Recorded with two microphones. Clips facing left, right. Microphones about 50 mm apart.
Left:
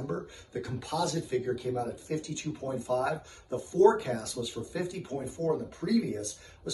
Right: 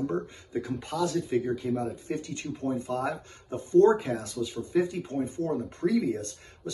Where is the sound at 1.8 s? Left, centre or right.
Right.